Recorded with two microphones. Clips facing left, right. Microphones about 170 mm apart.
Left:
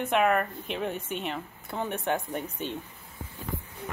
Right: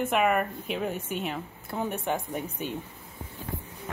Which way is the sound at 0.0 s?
5° right (ahead or behind).